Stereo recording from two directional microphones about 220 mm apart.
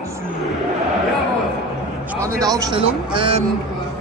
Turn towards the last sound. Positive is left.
turn(degrees=-25)  # may be behind; listen again after turning